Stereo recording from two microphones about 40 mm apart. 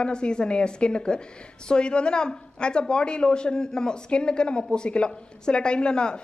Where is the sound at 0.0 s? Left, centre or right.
Left.